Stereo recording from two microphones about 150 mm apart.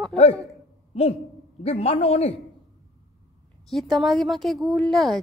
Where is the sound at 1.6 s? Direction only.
45° left (ahead or behind).